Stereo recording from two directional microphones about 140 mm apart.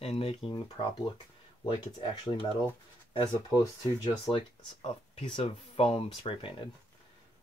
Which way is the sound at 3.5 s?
25° left (ahead or behind).